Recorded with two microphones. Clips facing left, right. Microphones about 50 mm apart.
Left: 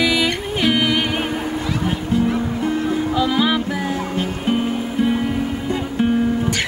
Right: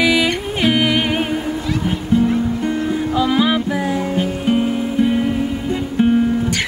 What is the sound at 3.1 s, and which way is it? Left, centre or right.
Music, centre.